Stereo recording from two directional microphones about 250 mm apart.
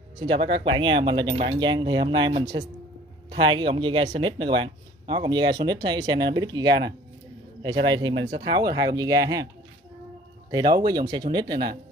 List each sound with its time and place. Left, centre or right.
0.2 s speech: right
10.5 s speech: centre